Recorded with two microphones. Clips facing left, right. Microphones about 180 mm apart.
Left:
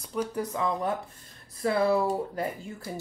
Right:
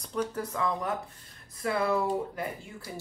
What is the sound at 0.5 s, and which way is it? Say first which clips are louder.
Speech: left 2 dB; 20° left (ahead or behind).